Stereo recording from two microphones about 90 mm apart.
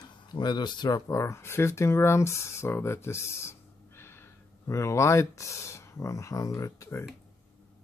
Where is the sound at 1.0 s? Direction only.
35° left (ahead or behind).